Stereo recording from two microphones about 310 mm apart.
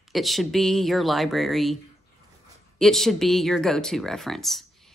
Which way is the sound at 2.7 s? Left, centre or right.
Centre.